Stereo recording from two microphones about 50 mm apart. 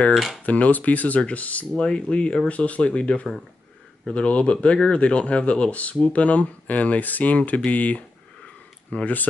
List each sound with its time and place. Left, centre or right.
0.1 s speech: centre
0.5 s speech: left
1.8 s speech: left